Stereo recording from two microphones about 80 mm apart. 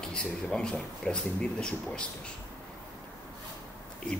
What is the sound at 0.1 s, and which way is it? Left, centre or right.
A man's voice, centre.